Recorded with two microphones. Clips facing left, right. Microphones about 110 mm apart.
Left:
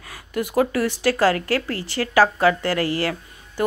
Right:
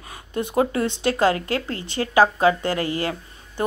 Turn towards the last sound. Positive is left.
turn(degrees=-20)  # may be behind; listen again after turning